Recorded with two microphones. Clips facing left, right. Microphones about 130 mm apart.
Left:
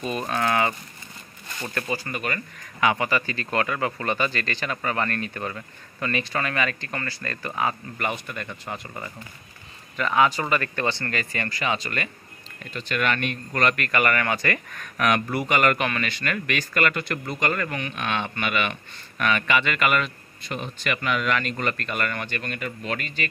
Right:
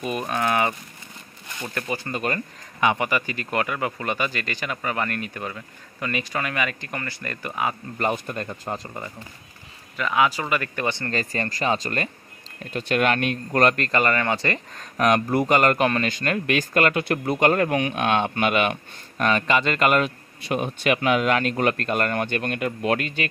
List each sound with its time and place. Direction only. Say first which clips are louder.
0.3 s speech: even; 15° right (ahead or behind)
1.9 s speech: right 4 dB; 25° right (ahead or behind)
8.0 s speech: right 5 dB; 35° right (ahead or behind)
9.9 s speech: left 1 dB; 5° right (ahead or behind)
11.1 s speech: right 3 dB; 35° right (ahead or behind)
13.7 s speech: right 1 dB; 25° right (ahead or behind)
20.4 s speech: right 7 dB; 55° right (ahead or behind)